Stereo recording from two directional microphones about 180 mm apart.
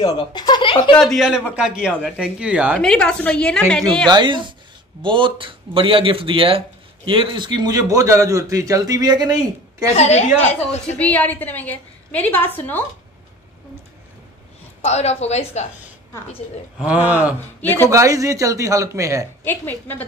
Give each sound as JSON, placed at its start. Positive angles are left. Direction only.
{"t": 0.0, "sound": "speech", "side_deg": 25}
{"t": 0.9, "sound": "a woman's voice", "side_deg": 0}
{"t": 2.8, "sound": "a woman's voice", "side_deg": 5}
{"t": 4.1, "sound": "a man's voice", "side_deg": -25}
{"t": 9.9, "sound": "a woman's voice", "side_deg": 35}
{"t": 11.0, "sound": "a woman's voice", "side_deg": 10}
{"t": 14.8, "sound": "a woman's voice", "side_deg": 35}
{"t": 16.7, "sound": "speech", "side_deg": -5}
{"t": 17.6, "sound": "speech", "side_deg": 10}
{"t": 17.8, "sound": "speech", "side_deg": -15}
{"t": 19.4, "sound": "a woman's voice", "side_deg": 10}